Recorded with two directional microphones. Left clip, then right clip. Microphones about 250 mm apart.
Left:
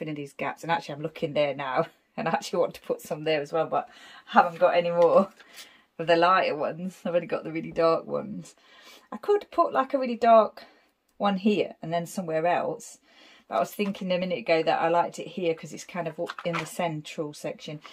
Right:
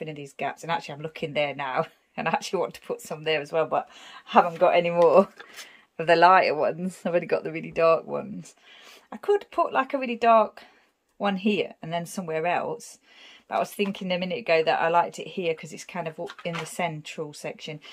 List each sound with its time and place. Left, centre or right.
0.0 s speech: centre
4.7 s speech: right
9.1 s speech: centre